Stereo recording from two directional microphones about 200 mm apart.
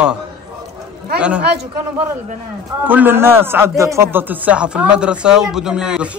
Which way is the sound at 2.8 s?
10° right (ahead or behind).